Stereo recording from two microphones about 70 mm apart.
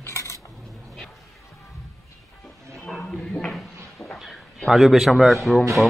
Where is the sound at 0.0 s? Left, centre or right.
Left.